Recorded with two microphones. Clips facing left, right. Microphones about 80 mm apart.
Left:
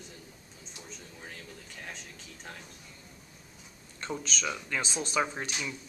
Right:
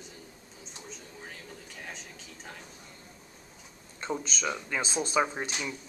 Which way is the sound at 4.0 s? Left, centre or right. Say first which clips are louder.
Right 2 dB; centre.